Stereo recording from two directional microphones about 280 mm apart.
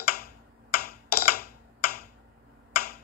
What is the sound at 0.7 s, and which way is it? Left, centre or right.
Computer keyboard, left.